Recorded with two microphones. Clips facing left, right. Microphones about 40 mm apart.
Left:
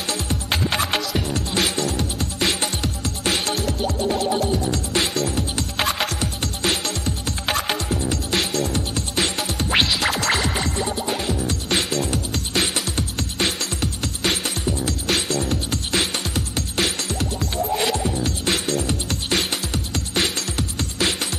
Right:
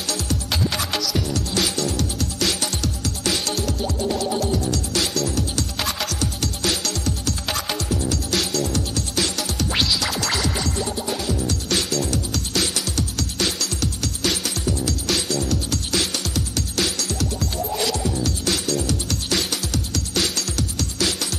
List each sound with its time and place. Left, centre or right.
0.1 s music: left